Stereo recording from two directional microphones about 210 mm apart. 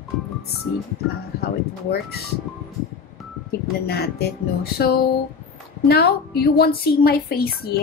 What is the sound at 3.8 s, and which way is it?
A woman's voice, 50° left (ahead or behind).